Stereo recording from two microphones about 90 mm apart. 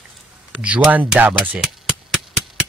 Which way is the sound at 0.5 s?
10° right (ahead or behind).